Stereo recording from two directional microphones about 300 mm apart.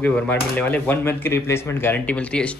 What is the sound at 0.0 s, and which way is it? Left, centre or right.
Speech, centre.